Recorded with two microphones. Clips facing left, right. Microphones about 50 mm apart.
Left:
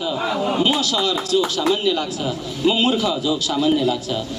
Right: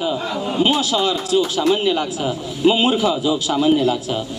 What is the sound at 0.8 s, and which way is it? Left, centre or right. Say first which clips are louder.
A man's voice: right 2 dB; centre.